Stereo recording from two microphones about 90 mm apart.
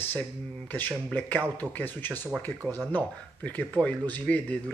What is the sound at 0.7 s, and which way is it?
Speech, 20° left (ahead or behind).